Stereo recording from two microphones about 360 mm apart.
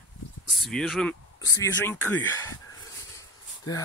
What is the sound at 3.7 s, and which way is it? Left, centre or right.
Speech, centre.